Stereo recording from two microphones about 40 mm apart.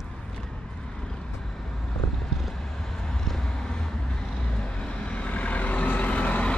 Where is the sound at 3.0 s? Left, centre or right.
Centre; by 6.6 s left.